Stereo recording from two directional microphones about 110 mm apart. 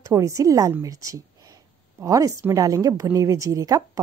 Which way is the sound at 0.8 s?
30° right (ahead or behind).